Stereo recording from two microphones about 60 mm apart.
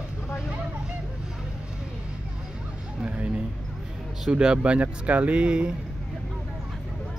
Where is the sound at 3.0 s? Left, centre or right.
Right.